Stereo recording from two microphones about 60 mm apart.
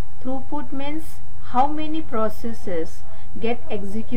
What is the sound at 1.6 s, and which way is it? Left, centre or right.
Speech, centre.